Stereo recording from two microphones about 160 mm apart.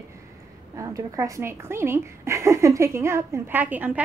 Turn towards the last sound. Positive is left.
turn(degrees=-10)  # may be behind; listen again after turning